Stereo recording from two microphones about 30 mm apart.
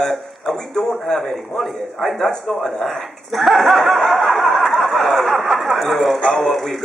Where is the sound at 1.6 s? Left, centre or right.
Centre.